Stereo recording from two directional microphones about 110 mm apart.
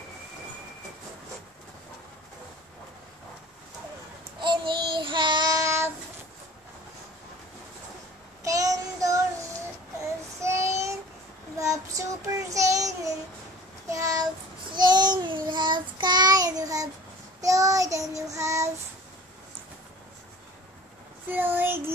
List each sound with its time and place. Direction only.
4.4 s child singing: 45° right (ahead or behind)
5.6 s child singing: 25° right (ahead or behind)
8.5 s child singing: 30° right (ahead or behind)
10.4 s child singing: 25° right (ahead or behind)
13.8 s a sound: 30° right (ahead or behind)
14.7 s child singing: 40° right (ahead or behind)
21.3 s child singing: 15° right (ahead or behind)